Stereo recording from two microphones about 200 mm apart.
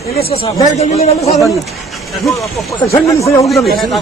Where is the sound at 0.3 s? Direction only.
30° left (ahead or behind).